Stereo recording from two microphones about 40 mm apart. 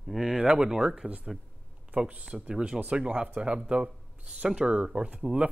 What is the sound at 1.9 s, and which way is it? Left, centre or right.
Speech, right.